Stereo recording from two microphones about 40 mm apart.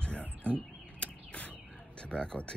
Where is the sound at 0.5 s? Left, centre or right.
Left.